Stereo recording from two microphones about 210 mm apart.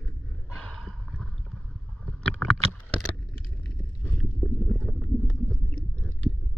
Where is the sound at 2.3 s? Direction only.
Centre (ahead or behind).